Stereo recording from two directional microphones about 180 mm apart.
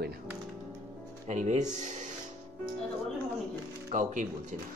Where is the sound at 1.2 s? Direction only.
40° right (ahead or behind).